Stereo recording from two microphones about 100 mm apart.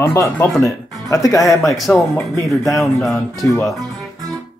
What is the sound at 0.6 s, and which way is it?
Speech, 35° left (ahead or behind).